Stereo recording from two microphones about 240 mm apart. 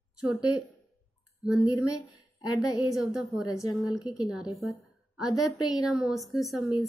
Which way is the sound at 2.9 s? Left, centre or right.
Centre.